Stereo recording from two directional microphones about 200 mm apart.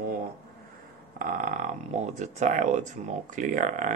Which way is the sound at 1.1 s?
45° right (ahead or behind).